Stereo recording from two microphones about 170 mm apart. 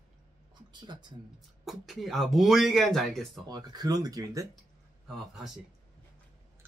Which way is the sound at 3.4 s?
25° right (ahead or behind).